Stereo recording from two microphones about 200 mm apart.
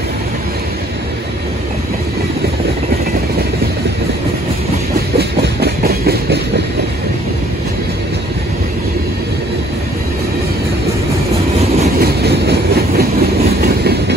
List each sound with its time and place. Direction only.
5.6 s train: 50° right (ahead or behind)
12.0 s train: 55° right (ahead or behind)